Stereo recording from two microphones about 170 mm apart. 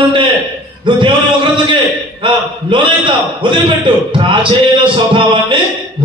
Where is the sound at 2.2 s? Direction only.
30° right (ahead or behind).